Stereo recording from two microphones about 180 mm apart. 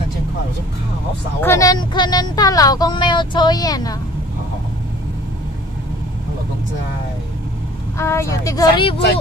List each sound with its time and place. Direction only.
1.4 s speech: 15° left (ahead or behind)
8.0 s speech: 15° left (ahead or behind)